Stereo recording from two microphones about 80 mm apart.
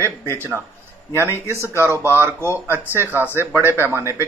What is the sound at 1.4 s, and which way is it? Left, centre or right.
Speech, right.